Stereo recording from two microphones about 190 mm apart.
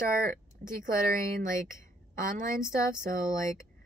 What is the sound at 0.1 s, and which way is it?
Speech, 50° right (ahead or behind).